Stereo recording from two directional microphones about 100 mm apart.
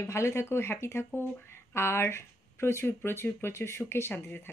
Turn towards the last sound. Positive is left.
turn(degrees=20)  # may be behind; listen again after turning